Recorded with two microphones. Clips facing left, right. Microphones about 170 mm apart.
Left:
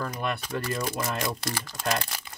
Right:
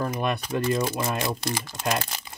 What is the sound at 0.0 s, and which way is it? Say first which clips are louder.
Speech: right 4 dB; 20° right (ahead or behind).